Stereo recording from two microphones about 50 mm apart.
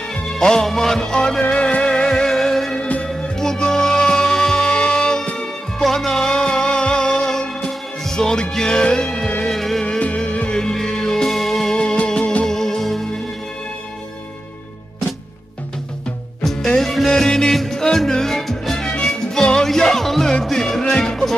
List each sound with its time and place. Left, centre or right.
0.4 s music: centre
9.8 s music: left
12.4 s music: centre
16.7 s music: centre